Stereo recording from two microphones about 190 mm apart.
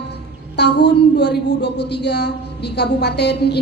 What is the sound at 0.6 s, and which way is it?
A woman's voice, 60° left (ahead or behind).